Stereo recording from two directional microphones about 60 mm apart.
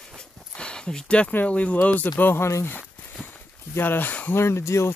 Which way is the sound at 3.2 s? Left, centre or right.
Left.